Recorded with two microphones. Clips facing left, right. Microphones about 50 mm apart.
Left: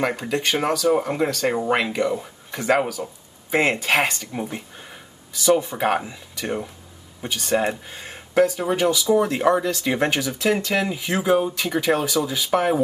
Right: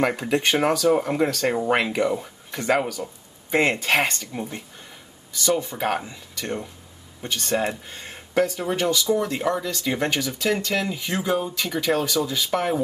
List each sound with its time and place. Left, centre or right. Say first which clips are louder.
0.0 s speech: right 1 dB; centre
9.2 s speech: left 5 dB; centre